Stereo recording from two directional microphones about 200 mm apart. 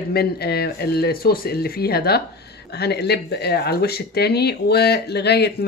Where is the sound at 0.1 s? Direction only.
50° left (ahead or behind).